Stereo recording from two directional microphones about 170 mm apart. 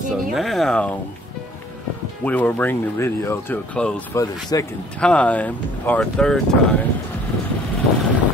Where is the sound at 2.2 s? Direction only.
10° left (ahead or behind).